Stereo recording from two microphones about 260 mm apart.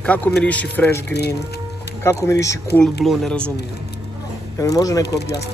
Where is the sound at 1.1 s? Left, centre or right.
Left.